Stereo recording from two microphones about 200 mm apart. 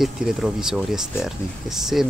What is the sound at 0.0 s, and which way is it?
Speech, centre (ahead or behind).